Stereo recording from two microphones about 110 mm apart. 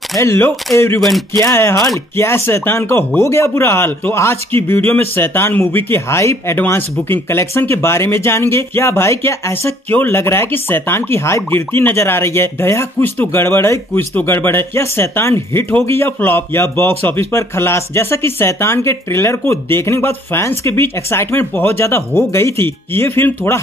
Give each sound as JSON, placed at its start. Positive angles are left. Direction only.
{"t": 0.2, "sound": "a man's voice", "side_deg": 25}
{"t": 1.0, "sound": "speech", "side_deg": 0}
{"t": 1.4, "sound": "a man's voice", "side_deg": 25}